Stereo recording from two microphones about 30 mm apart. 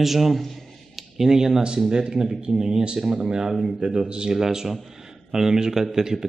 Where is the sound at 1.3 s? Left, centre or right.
Centre.